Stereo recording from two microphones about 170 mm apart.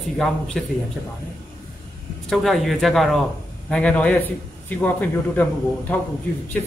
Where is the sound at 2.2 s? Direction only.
Centre (ahead or behind).